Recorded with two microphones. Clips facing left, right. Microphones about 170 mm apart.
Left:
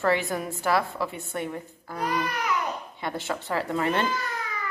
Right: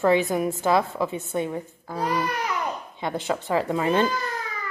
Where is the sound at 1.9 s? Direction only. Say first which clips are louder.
Right 3 dB; 25° right (ahead or behind).